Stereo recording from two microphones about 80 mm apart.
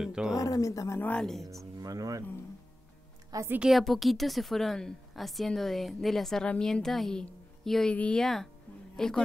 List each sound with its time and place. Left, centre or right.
0.0 s speech: centre
0.4 s speech: left
1.1 s a woman's voice: centre
1.8 s speech: right
3.3 s a woman's voice: right
3.7 s a woman's voice: centre
8.2 s a woman's voice: centre